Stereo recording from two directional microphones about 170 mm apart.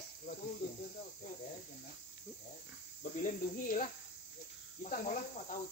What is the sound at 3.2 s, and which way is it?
Cricket, 50° left (ahead or behind).